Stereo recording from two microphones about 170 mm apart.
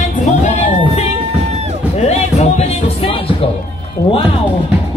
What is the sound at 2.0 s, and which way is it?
Music, 40° left (ahead or behind).